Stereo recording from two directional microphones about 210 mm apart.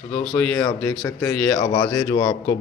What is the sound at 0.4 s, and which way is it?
Speech, 10° left (ahead or behind).